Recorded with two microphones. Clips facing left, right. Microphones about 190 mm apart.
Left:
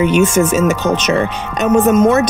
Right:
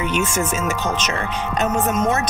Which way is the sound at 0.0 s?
75° left (ahead or behind).